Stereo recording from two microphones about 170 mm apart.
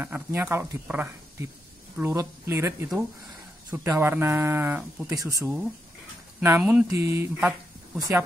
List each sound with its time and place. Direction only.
0.0 s speech: 10° right (ahead or behind)